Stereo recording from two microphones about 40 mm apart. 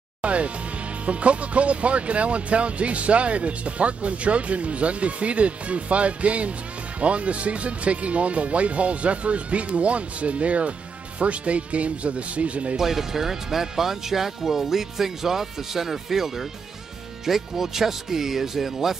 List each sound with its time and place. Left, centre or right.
0.2 s music: right
1.0 s speech: right
12.7 s speech: centre